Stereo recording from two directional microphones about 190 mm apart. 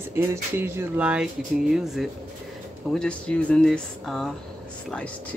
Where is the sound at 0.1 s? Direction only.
10° right (ahead or behind).